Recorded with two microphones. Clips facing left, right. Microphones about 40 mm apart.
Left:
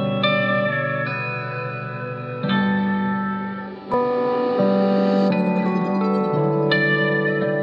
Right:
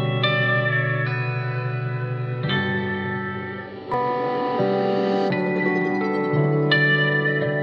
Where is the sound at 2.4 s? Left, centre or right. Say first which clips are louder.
Left 3 dB; centre.